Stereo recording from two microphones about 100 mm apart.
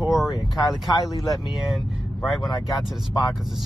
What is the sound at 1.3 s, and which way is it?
Speech, centre (ahead or behind).